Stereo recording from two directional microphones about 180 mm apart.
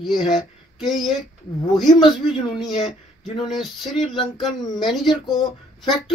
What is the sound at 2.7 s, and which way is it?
Speech, 35° left (ahead or behind).